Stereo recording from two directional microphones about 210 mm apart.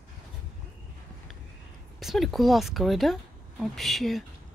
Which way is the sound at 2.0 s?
Centre (ahead or behind).